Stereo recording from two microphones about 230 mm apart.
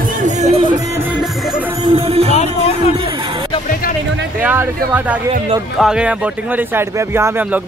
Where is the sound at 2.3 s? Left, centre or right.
Left.